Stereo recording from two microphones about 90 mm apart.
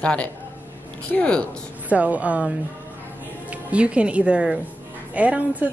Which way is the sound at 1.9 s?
15° right (ahead or behind).